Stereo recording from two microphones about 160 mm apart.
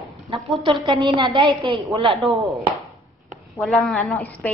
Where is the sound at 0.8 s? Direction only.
30° right (ahead or behind).